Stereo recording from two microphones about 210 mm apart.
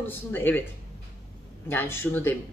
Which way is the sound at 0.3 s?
10° left (ahead or behind).